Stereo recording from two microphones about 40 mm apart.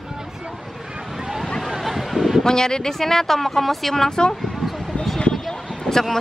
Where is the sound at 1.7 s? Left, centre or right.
Centre.